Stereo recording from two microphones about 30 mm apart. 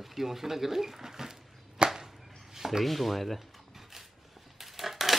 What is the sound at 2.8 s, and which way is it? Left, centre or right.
Speech, centre.